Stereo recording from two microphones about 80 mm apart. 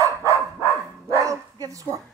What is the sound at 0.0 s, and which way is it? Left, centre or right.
Dog, right.